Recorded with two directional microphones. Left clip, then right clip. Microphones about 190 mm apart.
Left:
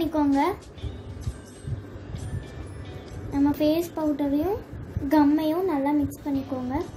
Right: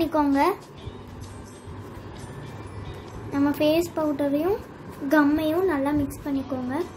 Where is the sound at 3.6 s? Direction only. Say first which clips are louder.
Right 2 dB; 20° right (ahead or behind).